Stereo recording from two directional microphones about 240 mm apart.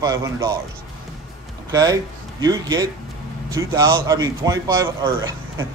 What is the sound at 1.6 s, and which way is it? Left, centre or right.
Speech, centre.